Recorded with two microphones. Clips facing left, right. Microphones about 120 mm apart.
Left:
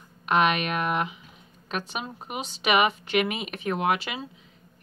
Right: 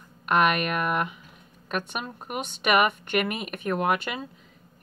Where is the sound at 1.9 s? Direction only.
Centre (ahead or behind).